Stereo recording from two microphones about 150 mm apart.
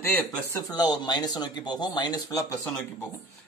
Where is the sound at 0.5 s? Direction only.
25° left (ahead or behind).